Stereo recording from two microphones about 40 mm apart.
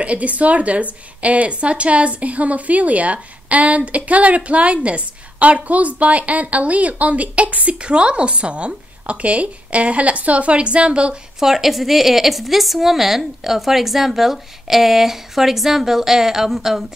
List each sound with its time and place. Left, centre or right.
0.0 s a woman's voice: right
7.8 s a woman's voice: right
11.3 s a woman's voice: centre